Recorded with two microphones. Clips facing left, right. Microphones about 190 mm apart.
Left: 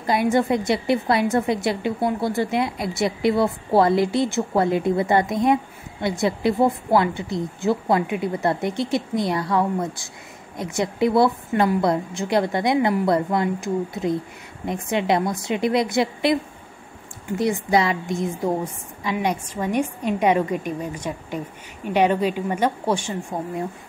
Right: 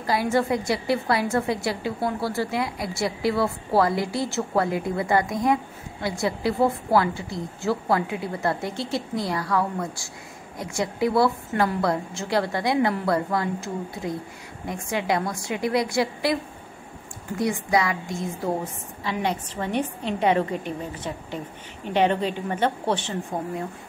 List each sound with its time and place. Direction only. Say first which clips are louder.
0.0 s a woman's voice: left 3 dB; 20° left (ahead or behind)
17.4 s a woman's voice: left 3 dB; 25° left (ahead or behind)